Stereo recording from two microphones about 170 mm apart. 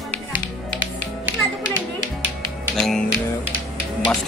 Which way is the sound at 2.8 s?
5° left (ahead or behind).